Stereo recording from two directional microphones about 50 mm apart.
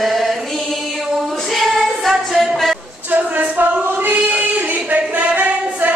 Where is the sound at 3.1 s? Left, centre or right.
Right.